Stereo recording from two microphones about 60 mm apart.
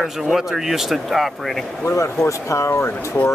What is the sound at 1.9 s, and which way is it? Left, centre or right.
Speech, left.